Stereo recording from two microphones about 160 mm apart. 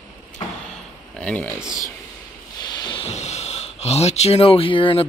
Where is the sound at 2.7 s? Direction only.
30° left (ahead or behind).